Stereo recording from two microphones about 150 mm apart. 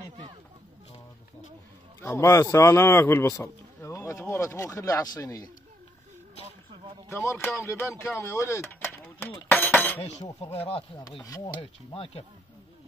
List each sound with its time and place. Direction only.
2.0 s speech: 20° left (ahead or behind)
7.1 s speech: 20° left (ahead or behind)
11.2 s speech: 25° left (ahead or behind)
11.6 s speech: 40° left (ahead or behind)